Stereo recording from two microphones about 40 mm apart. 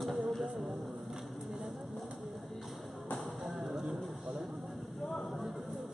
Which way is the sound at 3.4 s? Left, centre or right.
Centre.